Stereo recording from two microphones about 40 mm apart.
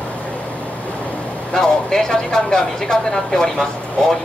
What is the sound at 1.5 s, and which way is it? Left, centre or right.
Speech, centre.